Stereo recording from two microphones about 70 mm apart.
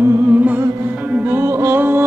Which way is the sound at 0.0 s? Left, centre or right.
Right.